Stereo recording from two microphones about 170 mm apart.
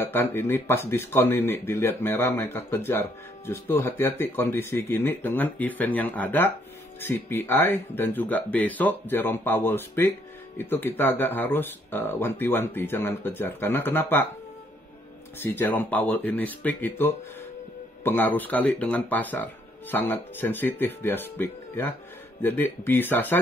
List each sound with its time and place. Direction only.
0.0 s speech: 15° left (ahead or behind)
15.3 s speech: 10° left (ahead or behind)